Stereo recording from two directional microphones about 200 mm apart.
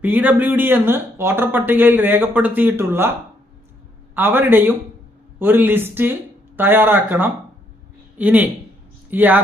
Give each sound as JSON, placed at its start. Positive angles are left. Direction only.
{"t": 0.0, "sound": "speech", "side_deg": -10}